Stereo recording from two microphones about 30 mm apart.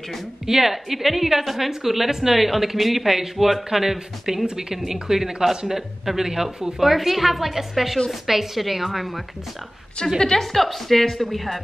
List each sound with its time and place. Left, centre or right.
0.5 s a woman's voice: centre
4.5 s a woman's voice: centre
10.1 s a woman's voice: centre